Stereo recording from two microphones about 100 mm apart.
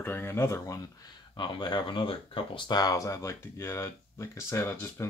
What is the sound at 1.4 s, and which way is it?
Speech, 50° left (ahead or behind).